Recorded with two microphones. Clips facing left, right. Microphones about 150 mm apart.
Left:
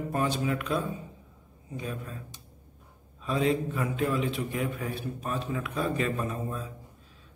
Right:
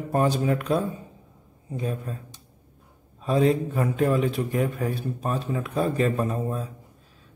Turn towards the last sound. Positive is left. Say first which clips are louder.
# right 6 dB
turn(degrees=-40)  # may be behind; listen again after turning